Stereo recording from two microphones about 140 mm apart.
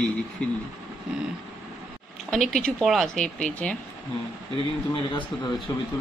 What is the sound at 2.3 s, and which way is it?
Speech, centre (ahead or behind).